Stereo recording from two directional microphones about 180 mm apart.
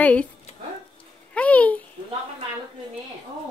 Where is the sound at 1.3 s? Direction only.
10° left (ahead or behind).